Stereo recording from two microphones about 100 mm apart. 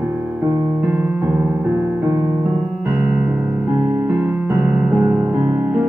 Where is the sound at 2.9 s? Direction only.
20° right (ahead or behind).